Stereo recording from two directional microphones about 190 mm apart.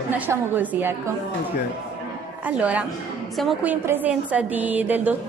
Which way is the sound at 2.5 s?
5° right (ahead or behind).